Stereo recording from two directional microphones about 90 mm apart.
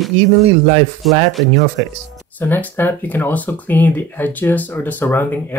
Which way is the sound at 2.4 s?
25° left (ahead or behind).